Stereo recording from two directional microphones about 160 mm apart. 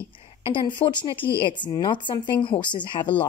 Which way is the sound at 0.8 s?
30° left (ahead or behind).